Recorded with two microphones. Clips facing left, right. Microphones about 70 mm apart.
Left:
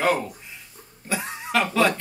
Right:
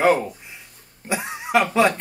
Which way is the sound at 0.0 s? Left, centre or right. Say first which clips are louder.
Right 5 dB; right.